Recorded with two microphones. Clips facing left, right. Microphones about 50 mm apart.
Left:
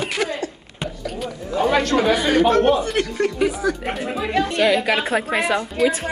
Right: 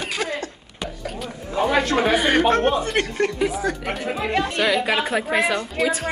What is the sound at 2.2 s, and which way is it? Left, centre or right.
Speech, right.